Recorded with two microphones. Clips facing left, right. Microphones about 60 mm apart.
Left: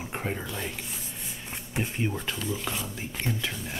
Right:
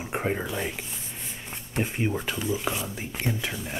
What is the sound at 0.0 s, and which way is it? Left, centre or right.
Speech, centre.